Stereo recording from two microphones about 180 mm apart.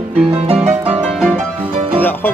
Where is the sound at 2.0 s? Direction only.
10° left (ahead or behind).